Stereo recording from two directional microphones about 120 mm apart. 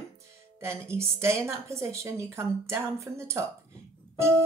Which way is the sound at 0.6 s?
20° right (ahead or behind).